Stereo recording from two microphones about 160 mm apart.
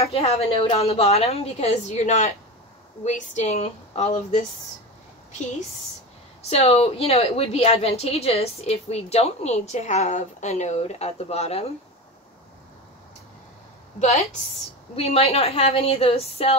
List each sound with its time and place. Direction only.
0.0 s a woman's voice: 40° left (ahead or behind)
6.4 s a woman's voice: 40° left (ahead or behind)
13.9 s a woman's voice: 45° left (ahead or behind)